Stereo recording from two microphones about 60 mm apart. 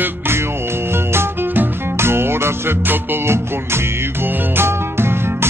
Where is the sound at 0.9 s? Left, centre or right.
Right.